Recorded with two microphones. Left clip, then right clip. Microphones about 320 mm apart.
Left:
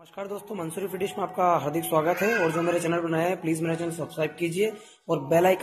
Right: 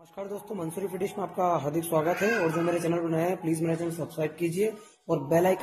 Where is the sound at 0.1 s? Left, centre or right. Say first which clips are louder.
Left 2 dB; centre.